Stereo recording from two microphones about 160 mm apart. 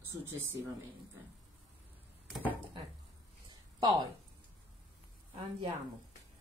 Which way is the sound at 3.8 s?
25° right (ahead or behind).